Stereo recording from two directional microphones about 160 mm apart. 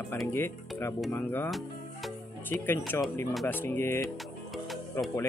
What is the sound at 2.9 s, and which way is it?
Speech, 15° left (ahead or behind).